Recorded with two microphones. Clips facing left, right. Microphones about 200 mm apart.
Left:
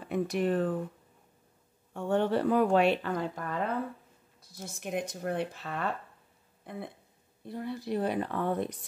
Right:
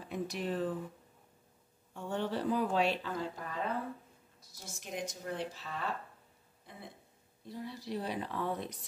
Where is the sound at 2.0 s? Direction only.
60° left (ahead or behind).